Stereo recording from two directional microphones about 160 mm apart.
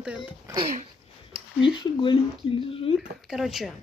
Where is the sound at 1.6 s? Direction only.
30° left (ahead or behind).